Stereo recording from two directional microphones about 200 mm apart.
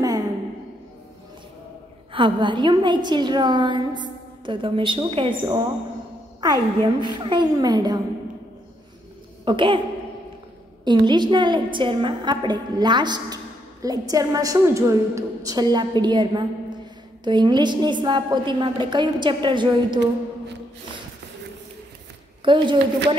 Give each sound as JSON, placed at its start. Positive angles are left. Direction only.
{"t": 2.1, "sound": "a woman's voice", "side_deg": -25}
{"t": 9.4, "sound": "speech", "side_deg": -25}
{"t": 10.8, "sound": "a woman's voice", "side_deg": -20}
{"t": 22.4, "sound": "a woman's voice", "side_deg": -25}